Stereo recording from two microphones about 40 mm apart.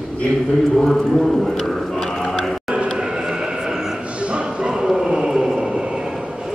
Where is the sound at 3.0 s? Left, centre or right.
Centre.